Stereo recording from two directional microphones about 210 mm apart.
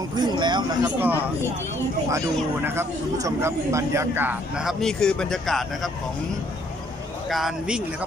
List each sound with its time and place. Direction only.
0.2 s a sound: 20° right (ahead or behind)
0.8 s a man's voice: 10° right (ahead or behind)
7.2 s speech: centre (ahead or behind)